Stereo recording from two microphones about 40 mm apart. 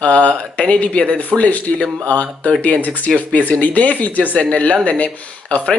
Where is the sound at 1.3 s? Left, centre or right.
Left.